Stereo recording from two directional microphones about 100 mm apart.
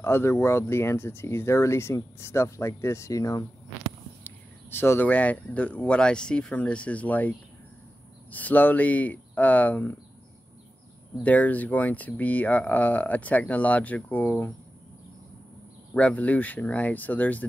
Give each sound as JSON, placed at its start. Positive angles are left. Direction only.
{"t": 0.0, "sound": "speech", "side_deg": 25}
{"t": 4.2, "sound": "speech", "side_deg": 20}
{"t": 11.2, "sound": "speech", "side_deg": 15}
{"t": 15.9, "sound": "speech", "side_deg": 15}